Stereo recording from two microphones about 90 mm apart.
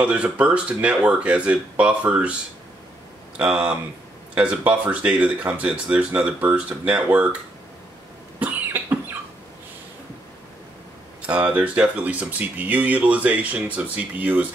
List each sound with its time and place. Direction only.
0.0 s speech: 15° right (ahead or behind)
3.3 s speech: 10° right (ahead or behind)
11.2 s speech: 15° right (ahead or behind)